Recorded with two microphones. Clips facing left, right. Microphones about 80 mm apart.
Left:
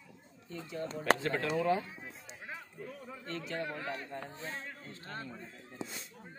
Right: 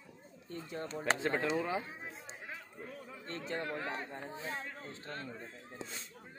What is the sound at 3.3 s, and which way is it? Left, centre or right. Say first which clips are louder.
Speech: even; right.